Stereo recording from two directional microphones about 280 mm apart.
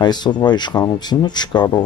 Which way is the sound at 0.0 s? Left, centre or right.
Centre.